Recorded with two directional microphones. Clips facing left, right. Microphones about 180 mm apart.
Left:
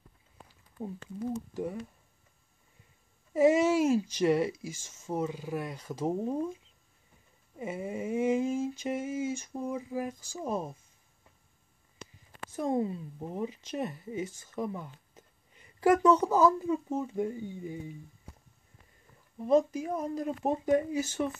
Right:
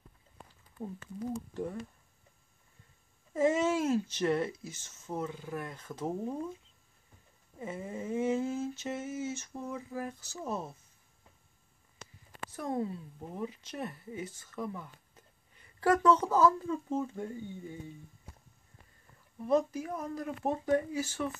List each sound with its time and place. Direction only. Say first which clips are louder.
0.8 s speech: left 2 dB; 25° left (ahead or behind)
1.5 s speech: left 2 dB; 10° left (ahead or behind)
3.3 s speech: left 5 dB; 10° left (ahead or behind)
7.5 s speech: left 4 dB; 15° left (ahead or behind)
12.5 s speech: left 5 dB; 20° left (ahead or behind)
19.3 s speech: left 4 dB; 20° left (ahead or behind)